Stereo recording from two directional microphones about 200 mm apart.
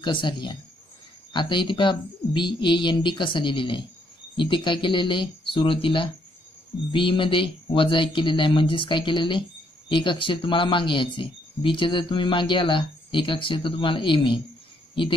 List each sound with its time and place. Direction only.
0.0 s a man's voice: 25° left (ahead or behind)